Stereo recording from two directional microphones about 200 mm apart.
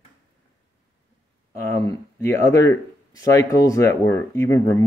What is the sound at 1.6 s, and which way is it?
Speech, 15° left (ahead or behind).